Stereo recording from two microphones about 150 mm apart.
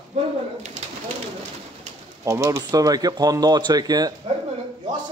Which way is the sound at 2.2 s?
20° right (ahead or behind).